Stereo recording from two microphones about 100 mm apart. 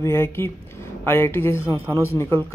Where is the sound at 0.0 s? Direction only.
25° left (ahead or behind).